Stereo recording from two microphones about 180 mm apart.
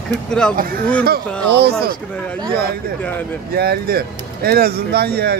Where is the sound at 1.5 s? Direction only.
65° right (ahead or behind).